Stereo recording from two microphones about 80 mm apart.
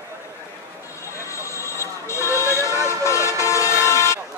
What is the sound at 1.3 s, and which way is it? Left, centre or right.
Vehicle, left.